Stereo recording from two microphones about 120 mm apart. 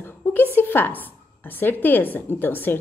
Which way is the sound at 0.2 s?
20° left (ahead or behind).